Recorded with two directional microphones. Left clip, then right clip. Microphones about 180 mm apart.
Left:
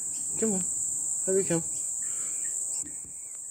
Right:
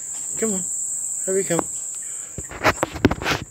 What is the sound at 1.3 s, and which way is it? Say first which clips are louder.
Speech: right 5 dB; 5° right (ahead or behind).